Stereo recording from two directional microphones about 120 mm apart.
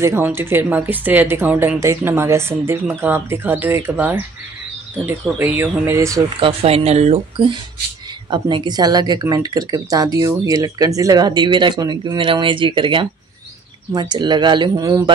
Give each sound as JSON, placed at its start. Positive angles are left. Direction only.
{"t": 0.0, "sound": "speech", "side_deg": -20}
{"t": 5.4, "sound": "speech", "side_deg": -15}
{"t": 6.4, "sound": "speech", "side_deg": -55}
{"t": 8.3, "sound": "speech", "side_deg": -40}
{"t": 14.8, "sound": "speech", "side_deg": -25}